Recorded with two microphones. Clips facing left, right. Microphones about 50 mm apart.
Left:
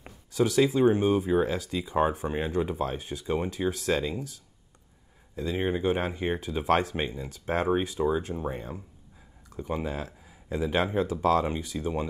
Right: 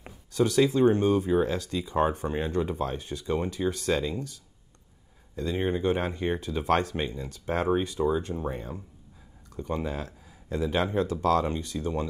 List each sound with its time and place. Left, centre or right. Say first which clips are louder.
0.3 s speech: even; centre
5.3 s speech: even; centre